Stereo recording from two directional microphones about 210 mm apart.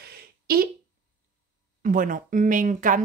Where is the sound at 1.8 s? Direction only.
40° right (ahead or behind).